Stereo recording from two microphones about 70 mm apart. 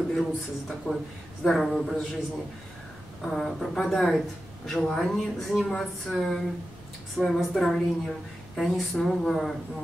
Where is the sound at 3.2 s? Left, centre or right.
Centre.